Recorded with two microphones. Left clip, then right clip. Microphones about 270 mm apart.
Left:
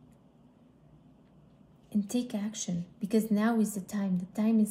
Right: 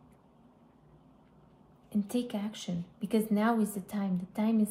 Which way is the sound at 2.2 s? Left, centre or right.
Centre.